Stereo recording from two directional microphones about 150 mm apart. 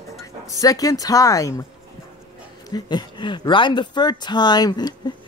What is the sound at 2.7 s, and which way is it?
Speech, 30° left (ahead or behind).